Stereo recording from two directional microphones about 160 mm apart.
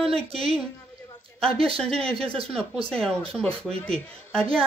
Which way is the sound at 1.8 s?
5° left (ahead or behind).